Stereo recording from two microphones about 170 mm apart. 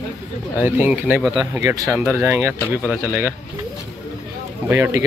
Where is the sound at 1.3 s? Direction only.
20° right (ahead or behind).